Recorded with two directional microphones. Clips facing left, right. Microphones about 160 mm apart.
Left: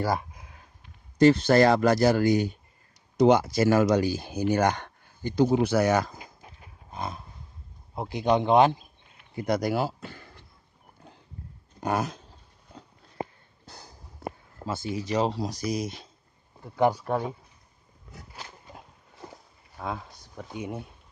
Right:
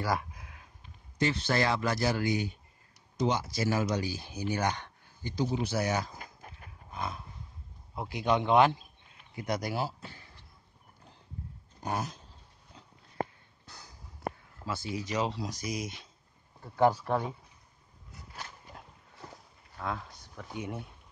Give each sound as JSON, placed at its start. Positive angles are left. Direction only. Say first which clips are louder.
{"t": 0.0, "sound": "a sound", "louder": "left 4 dB", "side_deg": 25}
{"t": 1.2, "sound": "speech", "louder": "left 11 dB", "side_deg": 40}
{"t": 3.2, "sound": "speech", "louder": "left 10 dB", "side_deg": 60}
{"t": 7.9, "sound": "a man's voice", "louder": "left 5 dB", "side_deg": 25}
{"t": 9.3, "sound": "speech", "louder": "left 7 dB", "side_deg": 35}
{"t": 10.0, "sound": "a sound", "louder": "left 6 dB", "side_deg": 55}
{"t": 11.8, "sound": "dog", "louder": "left 7 dB", "side_deg": 70}
{"t": 13.7, "sound": "a sound", "louder": "left 5 dB", "side_deg": 30}
{"t": 14.7, "sound": "speech", "louder": "left 5 dB", "side_deg": 25}
{"t": 16.6, "sound": "speech", "louder": "left 2 dB", "side_deg": 15}
{"t": 18.3, "sound": "a sound", "louder": "even", "side_deg": 15}
{"t": 19.8, "sound": "speech", "louder": "left 2 dB", "side_deg": 15}